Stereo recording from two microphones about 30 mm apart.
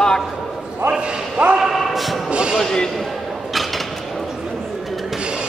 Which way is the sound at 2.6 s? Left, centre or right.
Centre.